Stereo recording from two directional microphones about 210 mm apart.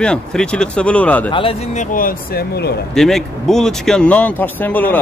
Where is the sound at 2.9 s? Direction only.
Centre (ahead or behind).